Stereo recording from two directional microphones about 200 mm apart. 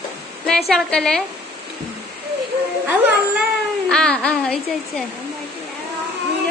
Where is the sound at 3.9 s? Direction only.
5° left (ahead or behind).